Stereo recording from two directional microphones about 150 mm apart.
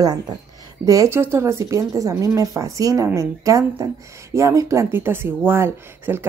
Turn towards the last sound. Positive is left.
turn(degrees=-15)  # may be behind; listen again after turning